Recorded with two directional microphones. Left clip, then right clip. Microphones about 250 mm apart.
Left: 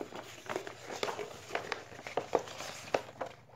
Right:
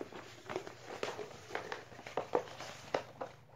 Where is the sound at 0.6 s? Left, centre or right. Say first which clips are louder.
Left 4 dB; left.